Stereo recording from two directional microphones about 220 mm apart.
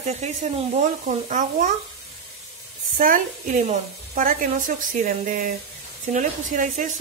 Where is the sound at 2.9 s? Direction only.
35° right (ahead or behind).